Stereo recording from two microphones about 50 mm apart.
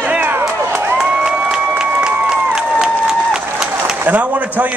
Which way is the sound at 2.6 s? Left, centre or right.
Centre.